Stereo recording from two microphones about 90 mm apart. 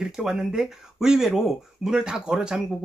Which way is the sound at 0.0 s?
5° right (ahead or behind).